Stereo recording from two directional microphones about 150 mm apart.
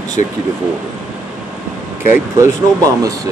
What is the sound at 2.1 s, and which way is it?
Speech, 20° right (ahead or behind).